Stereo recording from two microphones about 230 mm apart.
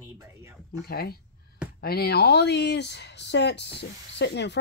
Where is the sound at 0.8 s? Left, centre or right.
Left.